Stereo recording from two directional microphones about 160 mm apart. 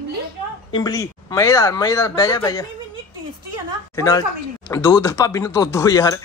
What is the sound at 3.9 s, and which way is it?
A woman's voice, 25° left (ahead or behind).